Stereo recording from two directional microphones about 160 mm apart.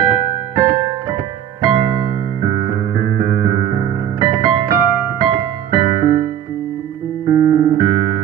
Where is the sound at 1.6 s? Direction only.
30° right (ahead or behind).